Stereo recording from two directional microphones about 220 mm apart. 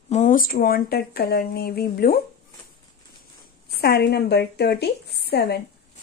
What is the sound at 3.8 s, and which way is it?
Speech, 45° left (ahead or behind).